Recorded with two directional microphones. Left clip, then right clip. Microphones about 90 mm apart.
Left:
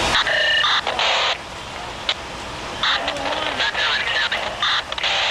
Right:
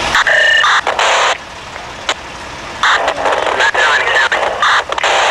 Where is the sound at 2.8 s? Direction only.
35° right (ahead or behind).